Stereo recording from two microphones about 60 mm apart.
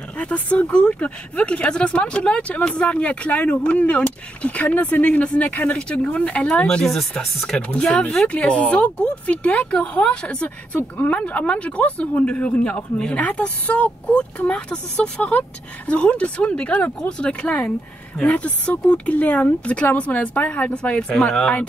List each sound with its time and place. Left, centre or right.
0.2 s speech: left